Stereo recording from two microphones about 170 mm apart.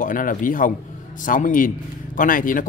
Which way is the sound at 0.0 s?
55° left (ahead or behind).